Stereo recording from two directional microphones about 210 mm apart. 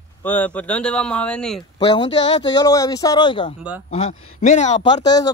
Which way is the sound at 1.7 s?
20° left (ahead or behind).